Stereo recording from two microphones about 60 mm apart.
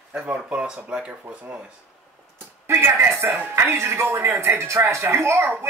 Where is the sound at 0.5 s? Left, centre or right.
Centre.